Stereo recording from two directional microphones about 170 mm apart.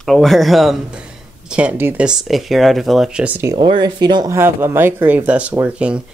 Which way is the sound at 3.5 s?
25° right (ahead or behind).